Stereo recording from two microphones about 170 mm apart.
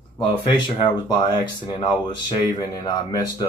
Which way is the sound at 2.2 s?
25° left (ahead or behind).